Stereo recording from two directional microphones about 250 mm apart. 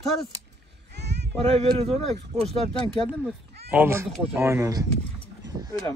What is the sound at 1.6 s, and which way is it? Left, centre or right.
Speech, right.